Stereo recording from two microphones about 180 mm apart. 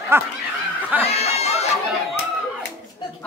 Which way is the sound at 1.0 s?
35° left (ahead or behind).